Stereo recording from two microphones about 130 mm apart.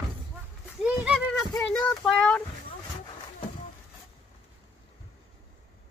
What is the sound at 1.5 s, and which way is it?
Speech, 5° left (ahead or behind).